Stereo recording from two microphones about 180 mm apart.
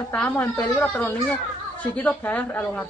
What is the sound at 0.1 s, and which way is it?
Speech, 10° left (ahead or behind).